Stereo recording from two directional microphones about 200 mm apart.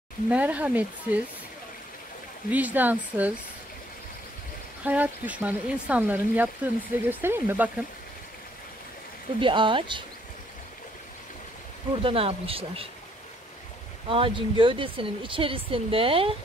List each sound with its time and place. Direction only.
0.3 s speech: 5° right (ahead or behind)
2.5 s speech: 10° right (ahead or behind)
4.8 s speech: 10° right (ahead or behind)
9.4 s speech: 25° right (ahead or behind)
11.9 s speech: 25° right (ahead or behind)
14.0 s speech: 25° right (ahead or behind)